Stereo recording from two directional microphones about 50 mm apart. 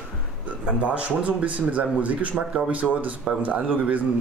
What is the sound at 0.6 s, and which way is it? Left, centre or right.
A man's voice, right.